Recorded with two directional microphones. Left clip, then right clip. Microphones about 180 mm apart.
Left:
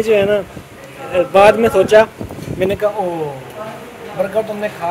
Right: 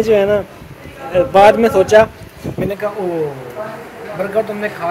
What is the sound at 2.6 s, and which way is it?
Speech, 70° left (ahead or behind).